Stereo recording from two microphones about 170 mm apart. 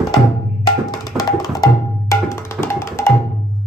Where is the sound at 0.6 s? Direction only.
Centre (ahead or behind).